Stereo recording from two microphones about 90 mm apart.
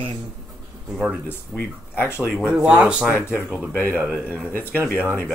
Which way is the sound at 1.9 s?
25° left (ahead or behind).